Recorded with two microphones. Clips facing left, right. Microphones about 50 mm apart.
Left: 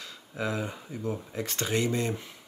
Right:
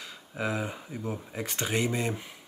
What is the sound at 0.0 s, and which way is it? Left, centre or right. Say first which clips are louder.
Speech: even; centre.